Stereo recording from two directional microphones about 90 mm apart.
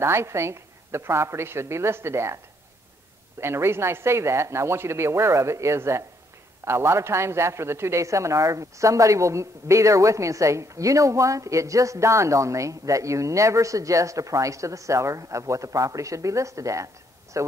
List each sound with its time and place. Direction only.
0.0 s a woman's voice: 30° right (ahead or behind)